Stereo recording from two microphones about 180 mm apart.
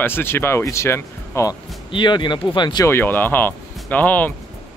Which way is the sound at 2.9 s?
10° left (ahead or behind).